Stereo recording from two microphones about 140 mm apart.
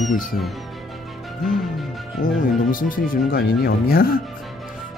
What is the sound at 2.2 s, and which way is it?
Speech, 65° left (ahead or behind).